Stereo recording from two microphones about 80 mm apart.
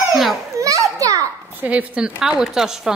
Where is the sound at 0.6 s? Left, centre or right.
Right.